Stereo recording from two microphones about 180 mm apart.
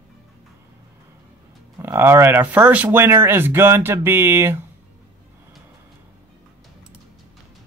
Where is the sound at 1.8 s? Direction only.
15° right (ahead or behind).